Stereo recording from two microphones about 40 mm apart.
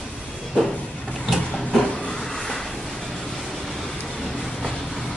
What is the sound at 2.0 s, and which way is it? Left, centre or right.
Vehicle, centre.